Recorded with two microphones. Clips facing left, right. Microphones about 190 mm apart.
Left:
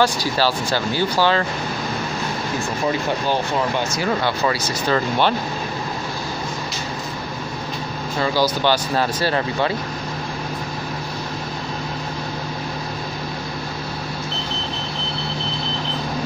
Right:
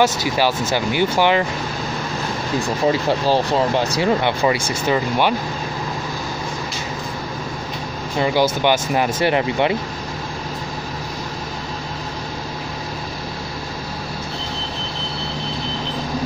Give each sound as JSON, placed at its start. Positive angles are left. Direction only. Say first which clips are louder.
{"t": 0.0, "sound": "speech", "louder": "right 1 dB", "side_deg": -20}
{"t": 3.1, "sound": "speech", "louder": "right 4 dB", "side_deg": -35}
{"t": 4.8, "sound": "speech", "louder": "right 1 dB", "side_deg": -10}
{"t": 8.2, "sound": "speech", "louder": "right 2 dB", "side_deg": -20}